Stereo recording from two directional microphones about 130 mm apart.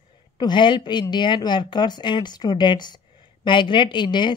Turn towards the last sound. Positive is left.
turn(degrees=35)  # may be behind; listen again after turning